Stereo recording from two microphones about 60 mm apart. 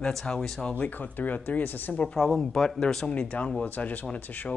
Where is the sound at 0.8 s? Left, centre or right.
Left.